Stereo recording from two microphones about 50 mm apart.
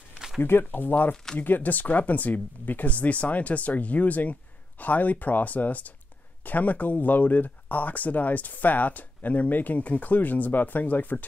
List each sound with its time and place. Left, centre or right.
0.4 s speech: left